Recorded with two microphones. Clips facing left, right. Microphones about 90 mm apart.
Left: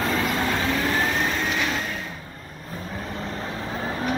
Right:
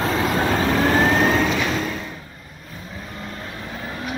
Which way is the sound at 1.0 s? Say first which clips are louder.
Right 7 dB; 75° right (ahead or behind).